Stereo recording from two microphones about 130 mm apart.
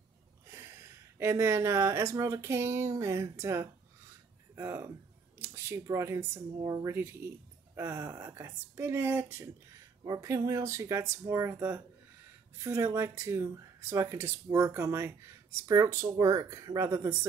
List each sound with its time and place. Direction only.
0.5 s speech: 20° right (ahead or behind)